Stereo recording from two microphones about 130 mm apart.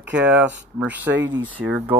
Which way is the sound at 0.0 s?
10° right (ahead or behind).